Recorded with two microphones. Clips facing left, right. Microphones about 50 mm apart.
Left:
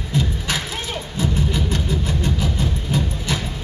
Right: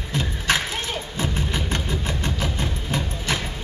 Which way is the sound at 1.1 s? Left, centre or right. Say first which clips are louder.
Left 6 dB; right.